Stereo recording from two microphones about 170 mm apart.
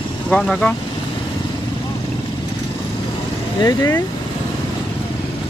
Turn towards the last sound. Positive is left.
turn(degrees=15)  # may be behind; listen again after turning